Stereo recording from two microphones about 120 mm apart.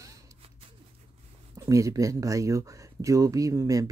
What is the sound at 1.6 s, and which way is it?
Speech, 25° right (ahead or behind).